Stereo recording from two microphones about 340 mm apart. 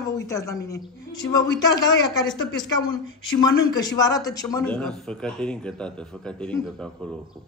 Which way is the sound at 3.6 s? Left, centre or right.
Centre.